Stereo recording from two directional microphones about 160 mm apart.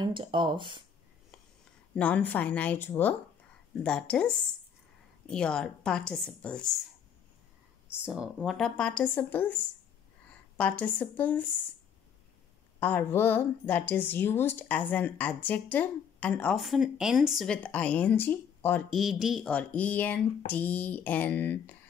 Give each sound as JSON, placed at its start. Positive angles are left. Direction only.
{"t": 0.0, "sound": "speech", "side_deg": -30}
{"t": 2.0, "sound": "a woman's voice", "side_deg": 10}
{"t": 7.9, "sound": "a woman's voice", "side_deg": -5}
{"t": 10.6, "sound": "a woman's voice", "side_deg": 10}
{"t": 12.8, "sound": "a woman's voice", "side_deg": 15}